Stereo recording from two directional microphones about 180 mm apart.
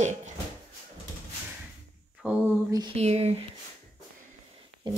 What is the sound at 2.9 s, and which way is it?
Speech, 35° right (ahead or behind).